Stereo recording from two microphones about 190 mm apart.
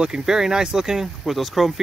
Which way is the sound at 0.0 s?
5° right (ahead or behind).